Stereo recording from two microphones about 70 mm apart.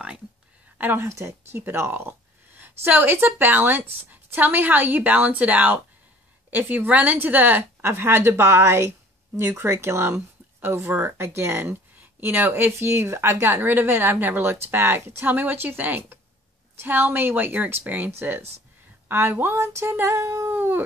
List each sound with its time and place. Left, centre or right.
0.7 s speech: right
1.0 s speech: right